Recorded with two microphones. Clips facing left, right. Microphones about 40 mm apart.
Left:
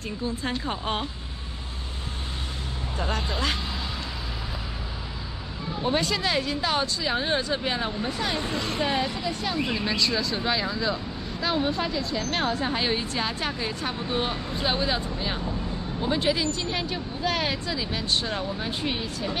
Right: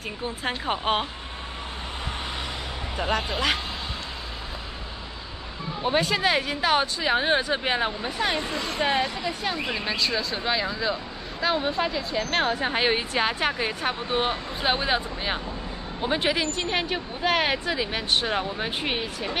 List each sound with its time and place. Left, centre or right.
0.4 s speech: right
3.0 s speech: right
5.8 s speech: centre
6.0 s speech: right; by 11.8 s centre
11.8 s speech: right